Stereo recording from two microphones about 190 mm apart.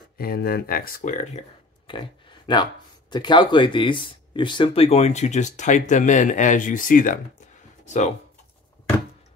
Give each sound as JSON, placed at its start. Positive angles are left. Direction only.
{"t": 0.2, "sound": "speech", "side_deg": 50}
{"t": 1.9, "sound": "a sound", "side_deg": 25}
{"t": 3.1, "sound": "speech", "side_deg": 25}